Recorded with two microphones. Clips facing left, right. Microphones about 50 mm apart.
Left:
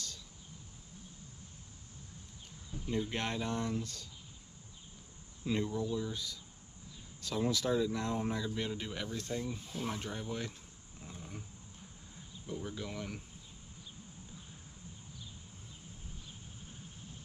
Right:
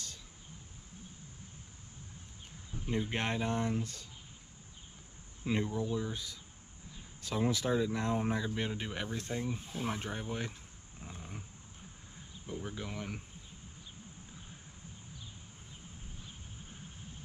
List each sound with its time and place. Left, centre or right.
2.9 s speech: right
5.4 s speech: right
11.0 s dog: centre
12.4 s speech: centre